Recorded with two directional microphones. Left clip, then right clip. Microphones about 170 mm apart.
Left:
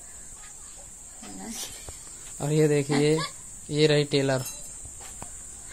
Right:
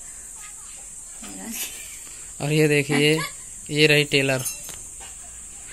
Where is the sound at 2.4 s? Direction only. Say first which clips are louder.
Right 3 dB; 5° right (ahead or behind).